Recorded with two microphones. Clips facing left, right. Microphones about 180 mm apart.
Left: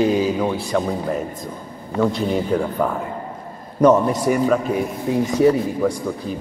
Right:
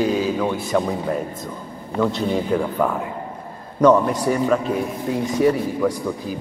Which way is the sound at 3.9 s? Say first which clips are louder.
Left 1 dB; 20° left (ahead or behind).